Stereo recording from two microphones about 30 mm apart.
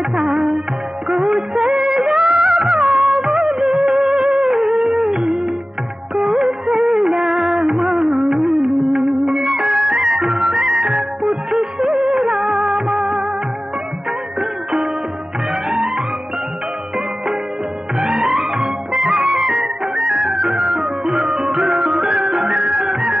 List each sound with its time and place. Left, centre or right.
0.1 s music: right
1.0 s music of bollywood: right
4.5 s music: centre
6.1 s music of bollywood: right
17.9 s music: right